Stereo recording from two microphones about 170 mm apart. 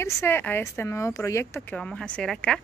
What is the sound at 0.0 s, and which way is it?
Speech, 15° left (ahead or behind).